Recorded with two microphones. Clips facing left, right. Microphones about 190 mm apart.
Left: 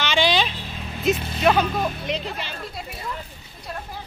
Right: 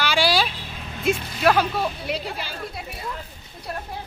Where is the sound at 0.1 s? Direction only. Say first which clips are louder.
Left 2 dB; 10° right (ahead or behind).